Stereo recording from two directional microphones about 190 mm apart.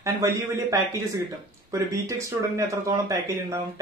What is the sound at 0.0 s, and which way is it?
Speech, 15° right (ahead or behind).